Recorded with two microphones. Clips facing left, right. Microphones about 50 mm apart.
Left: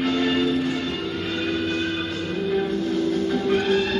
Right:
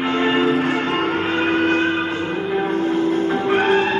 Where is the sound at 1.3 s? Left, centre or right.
Right.